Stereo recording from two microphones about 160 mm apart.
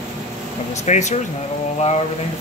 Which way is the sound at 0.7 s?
45° left (ahead or behind).